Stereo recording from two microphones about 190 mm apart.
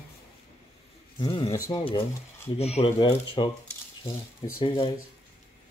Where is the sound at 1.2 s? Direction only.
20° left (ahead or behind).